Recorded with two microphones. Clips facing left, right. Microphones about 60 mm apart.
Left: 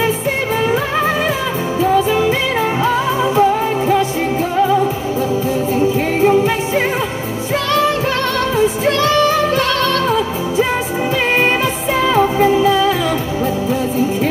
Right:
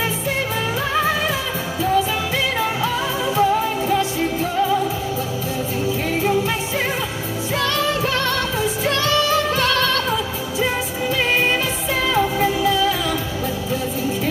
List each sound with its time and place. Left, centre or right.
3.3 s music: left
5.8 s music: left
12.1 s music: left